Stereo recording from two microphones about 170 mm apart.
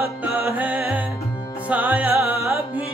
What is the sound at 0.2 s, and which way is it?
Music, 10° right (ahead or behind).